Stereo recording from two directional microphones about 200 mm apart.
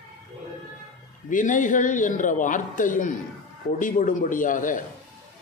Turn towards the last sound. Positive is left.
turn(degrees=40)  # may be behind; listen again after turning